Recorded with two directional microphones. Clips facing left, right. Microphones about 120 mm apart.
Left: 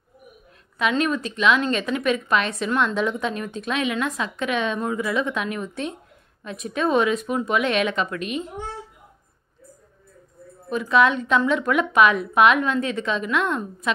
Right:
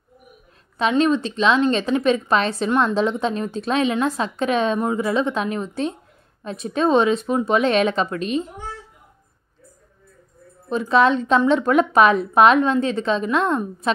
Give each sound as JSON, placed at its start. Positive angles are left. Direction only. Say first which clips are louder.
{"t": 0.7, "sound": "a woman's voice", "louder": "right 4 dB", "side_deg": -30}
{"t": 10.7, "sound": "a woman's voice", "louder": "right 2 dB", "side_deg": -30}